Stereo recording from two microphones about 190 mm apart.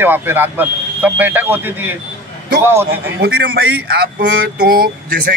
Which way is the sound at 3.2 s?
55° right (ahead or behind).